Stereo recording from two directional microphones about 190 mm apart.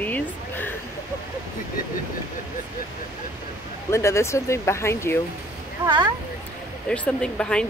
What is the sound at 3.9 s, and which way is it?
Speech, 15° left (ahead or behind).